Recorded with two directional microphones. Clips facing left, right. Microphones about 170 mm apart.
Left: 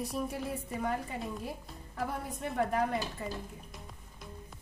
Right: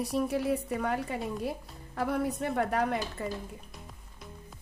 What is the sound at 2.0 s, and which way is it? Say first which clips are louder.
A woman's voice: right 7 dB; 75° right (ahead or behind).